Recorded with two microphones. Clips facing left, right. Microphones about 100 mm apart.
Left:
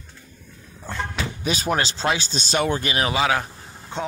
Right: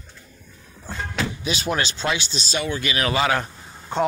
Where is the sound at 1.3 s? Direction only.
45° left (ahead or behind).